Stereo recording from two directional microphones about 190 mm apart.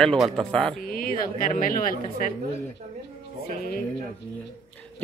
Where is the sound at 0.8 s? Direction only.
50° left (ahead or behind).